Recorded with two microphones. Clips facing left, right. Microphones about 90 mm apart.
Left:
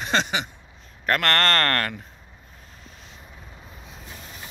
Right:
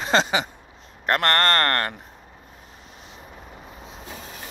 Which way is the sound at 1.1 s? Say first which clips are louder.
Right 1 dB; 20° right (ahead or behind).